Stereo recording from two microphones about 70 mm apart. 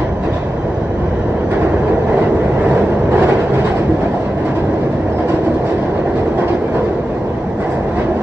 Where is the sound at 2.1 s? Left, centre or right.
Centre.